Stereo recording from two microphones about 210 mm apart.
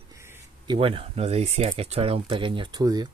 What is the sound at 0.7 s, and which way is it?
Speech, 25° right (ahead or behind).